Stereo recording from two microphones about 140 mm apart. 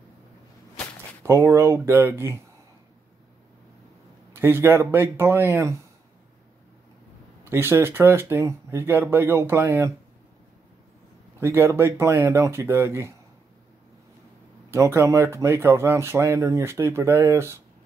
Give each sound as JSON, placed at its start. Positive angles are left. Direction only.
{"t": 1.2, "sound": "speech", "side_deg": -20}
{"t": 4.3, "sound": "speech", "side_deg": -15}
{"t": 7.4, "sound": "speech", "side_deg": -15}
{"t": 11.3, "sound": "speech", "side_deg": -15}
{"t": 14.7, "sound": "speech", "side_deg": -20}